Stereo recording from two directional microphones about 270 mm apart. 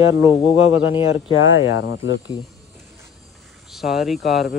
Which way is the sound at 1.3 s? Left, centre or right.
Left.